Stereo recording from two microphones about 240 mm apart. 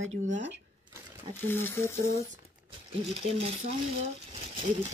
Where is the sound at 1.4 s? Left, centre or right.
Centre.